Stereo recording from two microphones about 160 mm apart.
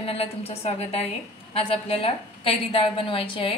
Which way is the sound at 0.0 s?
35° left (ahead or behind).